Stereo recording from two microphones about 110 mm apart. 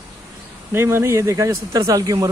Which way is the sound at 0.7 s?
25° right (ahead or behind).